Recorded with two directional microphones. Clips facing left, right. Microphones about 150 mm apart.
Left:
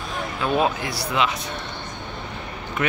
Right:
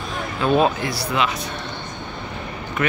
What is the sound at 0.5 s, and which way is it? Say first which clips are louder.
Speech: right 3 dB; 10° left (ahead or behind).